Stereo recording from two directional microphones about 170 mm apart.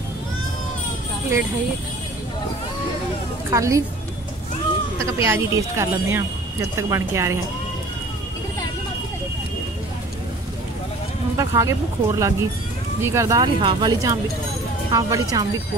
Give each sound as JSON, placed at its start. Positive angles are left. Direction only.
{"t": 3.4, "sound": "speech", "side_deg": -15}
{"t": 5.0, "sound": "speech", "side_deg": -15}
{"t": 11.3, "sound": "speech", "side_deg": -20}
{"t": 13.6, "sound": "speech", "side_deg": -30}